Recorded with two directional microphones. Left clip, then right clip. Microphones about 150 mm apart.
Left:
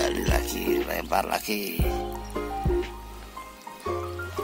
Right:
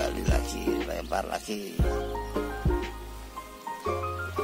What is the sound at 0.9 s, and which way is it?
Speech, 20° left (ahead or behind).